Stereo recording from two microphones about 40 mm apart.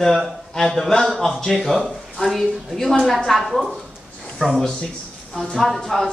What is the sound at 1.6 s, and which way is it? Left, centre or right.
Speech, centre.